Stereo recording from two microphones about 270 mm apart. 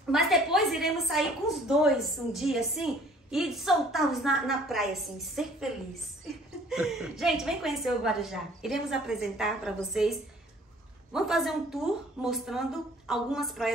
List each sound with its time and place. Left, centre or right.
0.1 s a woman's voice: centre
6.7 s a woman's voice: centre
11.1 s a woman's voice: centre